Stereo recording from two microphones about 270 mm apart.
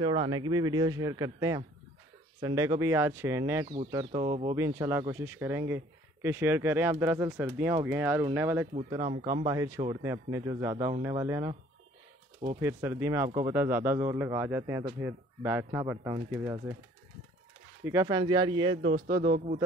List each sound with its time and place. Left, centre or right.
0.0 s speech: centre
4.6 s speech: centre
12.5 s speech: centre
17.8 s speech: centre
18.9 s a man's voice: right